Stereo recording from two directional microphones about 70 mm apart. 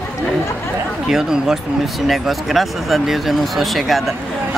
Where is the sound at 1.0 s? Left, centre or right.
Centre.